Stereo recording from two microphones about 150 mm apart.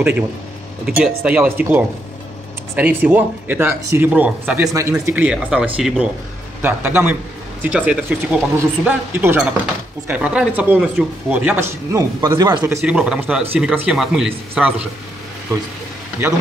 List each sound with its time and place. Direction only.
0.8 s speech: 5° right (ahead or behind); by 12.6 s 25° right (ahead or behind)
12.8 s speech: 5° right (ahead or behind)